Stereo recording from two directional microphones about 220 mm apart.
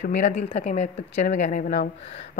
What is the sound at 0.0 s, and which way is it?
Speech, 35° left (ahead or behind).